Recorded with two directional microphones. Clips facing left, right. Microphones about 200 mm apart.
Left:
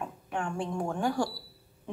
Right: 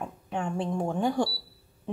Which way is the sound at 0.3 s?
20° right (ahead or behind).